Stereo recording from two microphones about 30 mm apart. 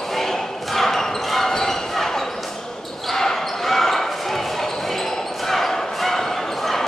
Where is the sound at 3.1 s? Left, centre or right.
Centre.